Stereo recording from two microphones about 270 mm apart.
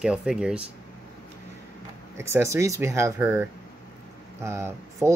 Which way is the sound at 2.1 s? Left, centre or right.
Centre.